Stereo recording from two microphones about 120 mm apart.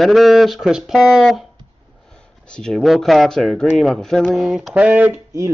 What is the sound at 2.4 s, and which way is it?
A man's voice, 5° left (ahead or behind).